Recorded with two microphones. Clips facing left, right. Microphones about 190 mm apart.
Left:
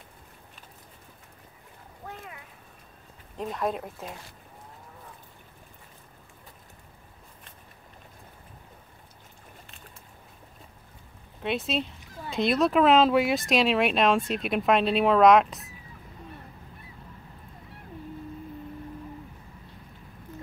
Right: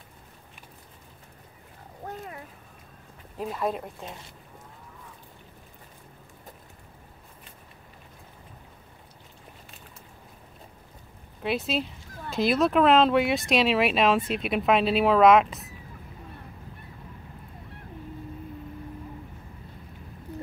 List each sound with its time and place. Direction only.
2.0 s a sound: 40° right (ahead or behind)
3.3 s speech: centre (ahead or behind)
11.4 s speech: centre (ahead or behind)